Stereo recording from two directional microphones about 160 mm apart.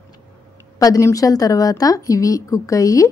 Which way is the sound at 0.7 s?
20° left (ahead or behind).